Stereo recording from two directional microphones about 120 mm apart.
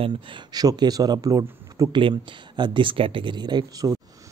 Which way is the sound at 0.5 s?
35° right (ahead or behind).